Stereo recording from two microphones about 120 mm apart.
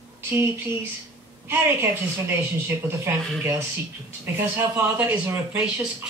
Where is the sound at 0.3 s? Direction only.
20° right (ahead or behind).